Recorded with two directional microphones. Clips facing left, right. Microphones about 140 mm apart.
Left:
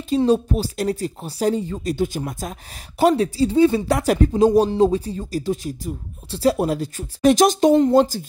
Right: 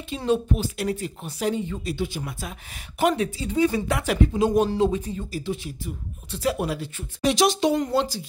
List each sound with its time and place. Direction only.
0.3 s speech: 35° left (ahead or behind)